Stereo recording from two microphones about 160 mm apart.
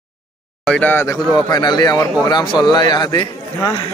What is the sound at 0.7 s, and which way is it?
Speech, 10° left (ahead or behind).